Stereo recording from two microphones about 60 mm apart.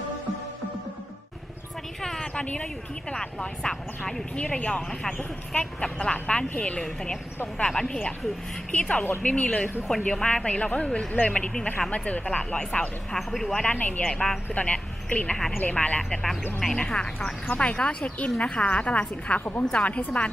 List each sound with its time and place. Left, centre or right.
2.0 s a sound: centre
2.4 s a woman's voice: centre
6.8 s a woman's voice: centre
13.3 s speech: centre
13.6 s a woman's voice: left
14.1 s speech: centre
14.5 s a woman's voice: left